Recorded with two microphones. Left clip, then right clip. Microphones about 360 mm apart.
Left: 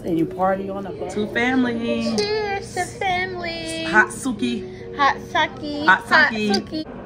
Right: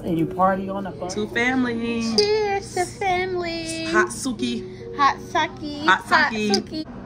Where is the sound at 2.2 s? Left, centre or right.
Centre.